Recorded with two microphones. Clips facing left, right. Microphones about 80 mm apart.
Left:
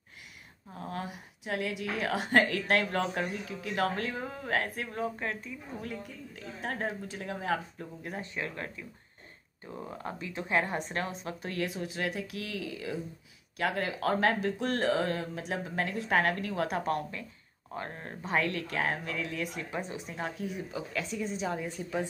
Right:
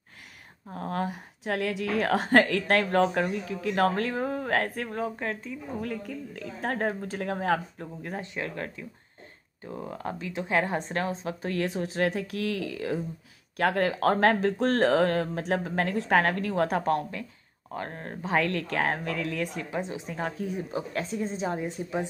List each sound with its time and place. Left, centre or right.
0.7 s speech: right
5.8 s a woman's voice: right
6.6 s speech: right
7.8 s a woman's voice: right
10.5 s a woman's voice: right
18.3 s speech: right
20.1 s a woman's voice: right